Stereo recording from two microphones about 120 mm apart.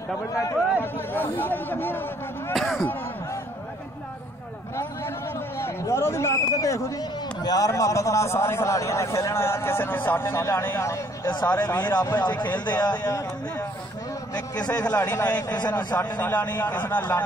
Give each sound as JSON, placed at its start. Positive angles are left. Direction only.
{"t": 0.3, "sound": "chatter", "side_deg": 25}
{"t": 2.5, "sound": "speech", "side_deg": 0}
{"t": 5.6, "sound": "a man's voice", "side_deg": 20}
{"t": 11.9, "sound": "a man's voice", "side_deg": 35}
{"t": 14.3, "sound": "a man's voice", "side_deg": 35}
{"t": 14.9, "sound": "a man's voice", "side_deg": 15}
{"t": 15.4, "sound": "a man's voice", "side_deg": 35}
{"t": 15.9, "sound": "a man's voice", "side_deg": 15}